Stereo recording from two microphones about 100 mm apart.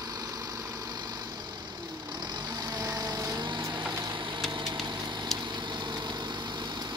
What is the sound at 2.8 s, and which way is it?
Vehicle, 40° right (ahead or behind).